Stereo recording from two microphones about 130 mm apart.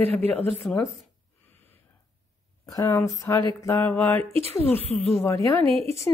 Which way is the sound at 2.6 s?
25° left (ahead or behind).